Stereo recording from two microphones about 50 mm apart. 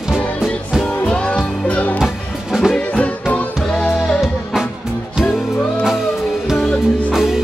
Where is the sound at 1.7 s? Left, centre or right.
Left.